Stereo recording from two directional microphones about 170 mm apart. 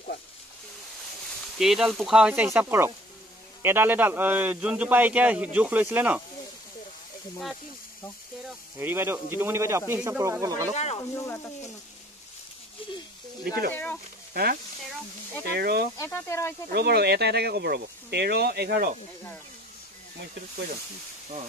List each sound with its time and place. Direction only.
1.6 s a man's voice: centre (ahead or behind)
8.7 s a man's voice: 15° right (ahead or behind)
10.7 s speech: 40° left (ahead or behind)
11.0 s speech: 15° left (ahead or behind)
13.4 s speech: 60° right (ahead or behind)
16.0 s speech: 15° left (ahead or behind)
16.7 s speech: 70° right (ahead or behind)